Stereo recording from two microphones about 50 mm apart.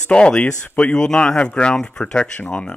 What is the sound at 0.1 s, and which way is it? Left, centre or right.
Speech, left.